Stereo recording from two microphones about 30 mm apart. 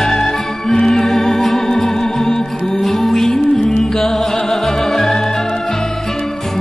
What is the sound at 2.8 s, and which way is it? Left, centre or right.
Music, centre.